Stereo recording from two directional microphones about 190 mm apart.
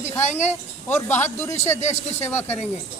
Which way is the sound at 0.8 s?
10° left (ahead or behind).